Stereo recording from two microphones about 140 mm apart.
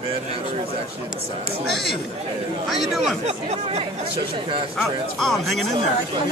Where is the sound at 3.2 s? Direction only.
50° right (ahead or behind).